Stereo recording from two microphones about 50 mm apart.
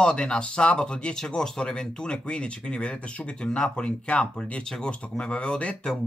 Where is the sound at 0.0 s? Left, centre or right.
Centre.